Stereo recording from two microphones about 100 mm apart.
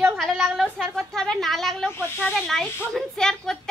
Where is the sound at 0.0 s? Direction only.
Centre (ahead or behind).